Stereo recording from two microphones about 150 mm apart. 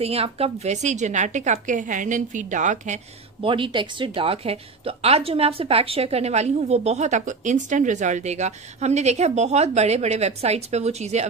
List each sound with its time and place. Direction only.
0.0 s speech: 40° right (ahead or behind)
3.4 s speech: 35° right (ahead or behind)